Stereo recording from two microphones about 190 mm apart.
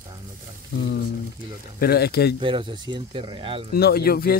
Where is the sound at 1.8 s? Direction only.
55° left (ahead or behind).